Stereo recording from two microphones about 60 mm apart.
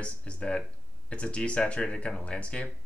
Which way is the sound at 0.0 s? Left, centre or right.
Centre.